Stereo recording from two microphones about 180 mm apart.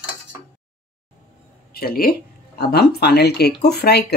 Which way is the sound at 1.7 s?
55° left (ahead or behind).